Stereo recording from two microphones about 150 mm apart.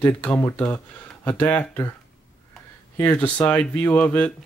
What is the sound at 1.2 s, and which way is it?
Speech, 10° left (ahead or behind).